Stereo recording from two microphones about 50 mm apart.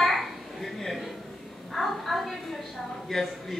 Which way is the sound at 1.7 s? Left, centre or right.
Centre.